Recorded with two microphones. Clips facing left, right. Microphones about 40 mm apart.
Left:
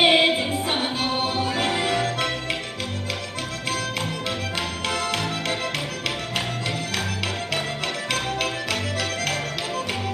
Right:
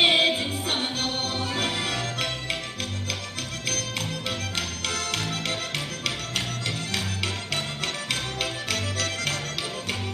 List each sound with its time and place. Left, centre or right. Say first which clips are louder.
0.0 s music: left 3 dB; centre
4.8 s music: left 5 dB; centre